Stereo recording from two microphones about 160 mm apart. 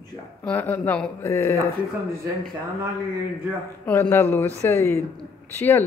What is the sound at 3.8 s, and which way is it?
Speech, 15° left (ahead or behind).